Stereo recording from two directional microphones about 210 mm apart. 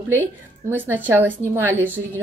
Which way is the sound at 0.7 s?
10° right (ahead or behind).